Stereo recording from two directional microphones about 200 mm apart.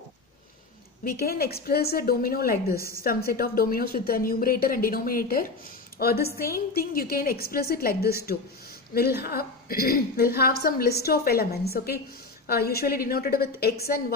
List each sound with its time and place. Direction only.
1.0 s a woman's voice: 50° left (ahead or behind)